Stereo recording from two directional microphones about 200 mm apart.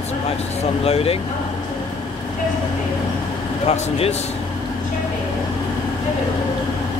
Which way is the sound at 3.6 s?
30° left (ahead or behind).